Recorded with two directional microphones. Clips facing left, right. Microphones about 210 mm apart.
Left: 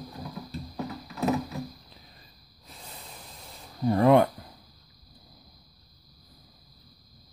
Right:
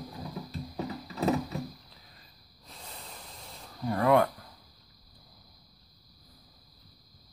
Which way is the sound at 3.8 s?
25° left (ahead or behind).